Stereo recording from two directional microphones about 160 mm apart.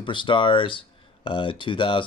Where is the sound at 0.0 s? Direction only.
30° left (ahead or behind).